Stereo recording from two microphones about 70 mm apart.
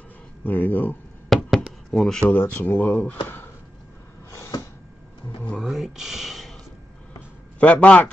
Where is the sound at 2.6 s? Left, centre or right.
Left.